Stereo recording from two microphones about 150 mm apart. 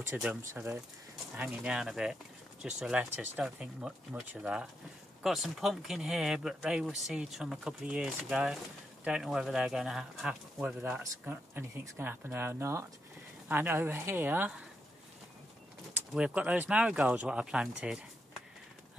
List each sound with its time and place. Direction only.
0.1 s speech: 5° right (ahead or behind)
1.3 s speech: 5° right (ahead or behind)
16.1 s speech: 5° right (ahead or behind)